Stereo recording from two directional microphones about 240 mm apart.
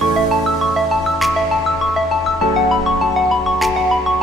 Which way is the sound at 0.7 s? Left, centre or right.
Centre.